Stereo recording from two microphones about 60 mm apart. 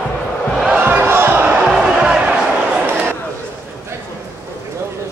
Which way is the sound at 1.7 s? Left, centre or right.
Centre.